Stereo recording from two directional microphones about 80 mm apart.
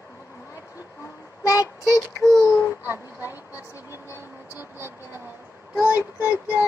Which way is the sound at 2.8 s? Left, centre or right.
Right.